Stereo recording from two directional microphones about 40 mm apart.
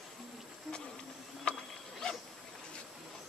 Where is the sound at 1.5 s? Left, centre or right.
Left.